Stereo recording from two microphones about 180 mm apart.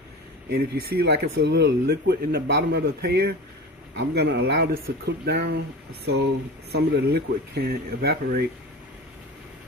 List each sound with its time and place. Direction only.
0.5 s speech: 60° right (ahead or behind)